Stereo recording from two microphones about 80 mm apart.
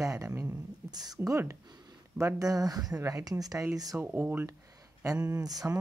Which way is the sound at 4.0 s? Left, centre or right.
Right.